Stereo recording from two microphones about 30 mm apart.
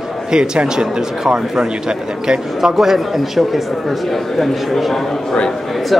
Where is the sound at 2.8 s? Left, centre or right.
Centre.